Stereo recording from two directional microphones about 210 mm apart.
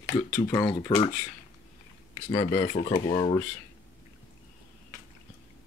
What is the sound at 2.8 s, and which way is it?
Speech, 25° left (ahead or behind).